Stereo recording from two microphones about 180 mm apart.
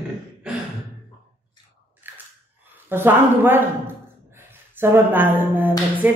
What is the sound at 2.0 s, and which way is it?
Biting, 10° right (ahead or behind).